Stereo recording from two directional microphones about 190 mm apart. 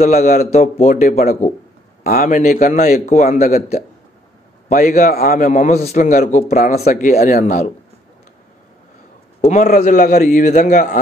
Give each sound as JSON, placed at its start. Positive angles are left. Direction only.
{"t": 0.0, "sound": "a man's voice", "side_deg": 35}
{"t": 4.7, "sound": "a man's voice", "side_deg": 45}
{"t": 9.4, "sound": "a man's voice", "side_deg": 40}
{"t": 9.8, "sound": "a man's voice", "side_deg": 50}